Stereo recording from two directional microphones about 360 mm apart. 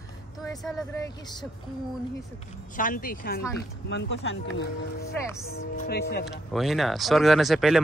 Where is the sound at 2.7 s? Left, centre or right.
Left.